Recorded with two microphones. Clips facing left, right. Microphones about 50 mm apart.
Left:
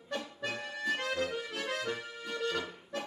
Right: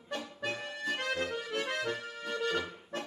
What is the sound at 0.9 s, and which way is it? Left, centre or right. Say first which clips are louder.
Accordion: right 1 dB; right.